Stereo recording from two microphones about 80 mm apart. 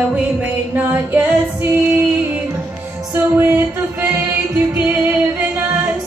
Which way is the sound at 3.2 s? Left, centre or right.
Right.